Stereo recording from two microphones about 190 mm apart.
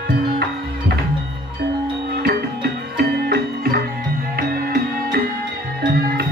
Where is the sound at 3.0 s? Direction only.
55° right (ahead or behind).